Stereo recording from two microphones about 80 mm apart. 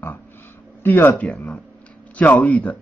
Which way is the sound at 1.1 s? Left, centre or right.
Centre.